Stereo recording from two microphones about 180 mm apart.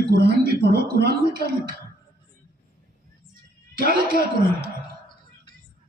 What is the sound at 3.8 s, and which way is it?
Speech, 55° right (ahead or behind).